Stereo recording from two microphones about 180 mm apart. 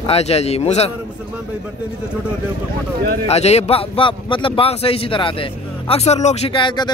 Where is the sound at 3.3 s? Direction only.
35° left (ahead or behind).